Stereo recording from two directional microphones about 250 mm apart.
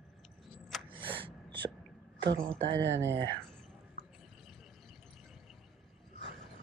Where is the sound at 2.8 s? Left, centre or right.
Right.